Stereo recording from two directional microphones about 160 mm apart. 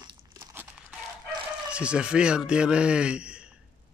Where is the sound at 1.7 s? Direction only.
5° right (ahead or behind).